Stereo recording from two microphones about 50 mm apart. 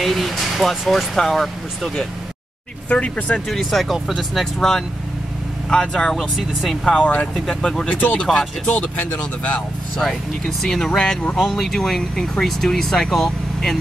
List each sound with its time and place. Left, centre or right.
0.0 s speech: centre
2.9 s speech: left
3.4 s speech: centre
4.6 s speech: centre
7.0 s speech: left
7.3 s speech: centre
9.9 s speech: centre